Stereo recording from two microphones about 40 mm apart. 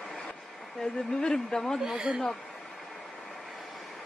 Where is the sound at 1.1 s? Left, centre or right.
Centre.